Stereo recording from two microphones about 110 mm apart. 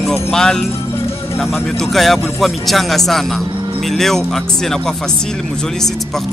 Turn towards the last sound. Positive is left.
turn(degrees=5)  # may be behind; listen again after turning